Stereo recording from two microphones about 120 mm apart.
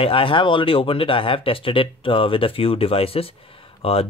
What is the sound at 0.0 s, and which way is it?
Speech, 50° left (ahead or behind).